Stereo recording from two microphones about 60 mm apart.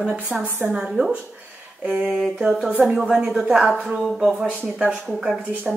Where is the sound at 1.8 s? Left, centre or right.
Centre.